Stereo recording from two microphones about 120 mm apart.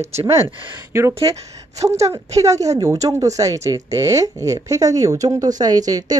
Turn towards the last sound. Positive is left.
turn(degrees=-30)  # may be behind; listen again after turning